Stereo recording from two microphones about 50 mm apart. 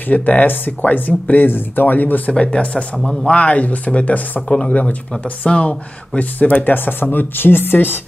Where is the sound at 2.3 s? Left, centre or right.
Centre; by 8.0 s left.